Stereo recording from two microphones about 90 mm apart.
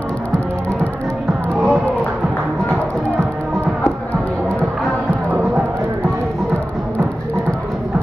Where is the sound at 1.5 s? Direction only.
5° right (ahead or behind).